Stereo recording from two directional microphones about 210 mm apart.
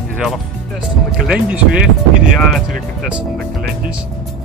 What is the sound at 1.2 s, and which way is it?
Speech, 5° right (ahead or behind).